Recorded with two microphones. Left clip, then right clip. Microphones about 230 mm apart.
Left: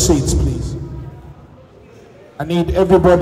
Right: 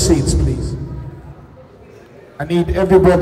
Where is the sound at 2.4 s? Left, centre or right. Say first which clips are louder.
Left 1 dB; left.